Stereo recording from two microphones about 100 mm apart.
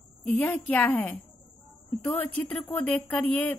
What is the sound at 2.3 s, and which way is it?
A woman's voice, 15° left (ahead or behind).